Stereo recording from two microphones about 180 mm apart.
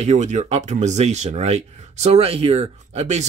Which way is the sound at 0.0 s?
40° right (ahead or behind).